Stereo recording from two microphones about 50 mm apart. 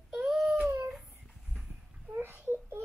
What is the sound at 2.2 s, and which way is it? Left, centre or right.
Baby cry, right.